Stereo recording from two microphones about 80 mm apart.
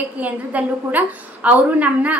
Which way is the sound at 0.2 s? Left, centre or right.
Centre.